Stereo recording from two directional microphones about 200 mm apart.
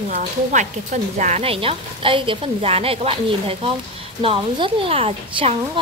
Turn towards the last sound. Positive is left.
turn(degrees=-25)  # may be behind; listen again after turning